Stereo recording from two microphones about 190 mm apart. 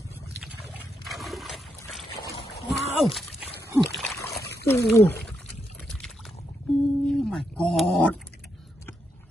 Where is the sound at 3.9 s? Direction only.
Centre (ahead or behind).